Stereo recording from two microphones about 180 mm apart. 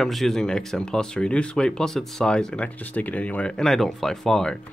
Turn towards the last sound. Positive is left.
turn(degrees=5)  # may be behind; listen again after turning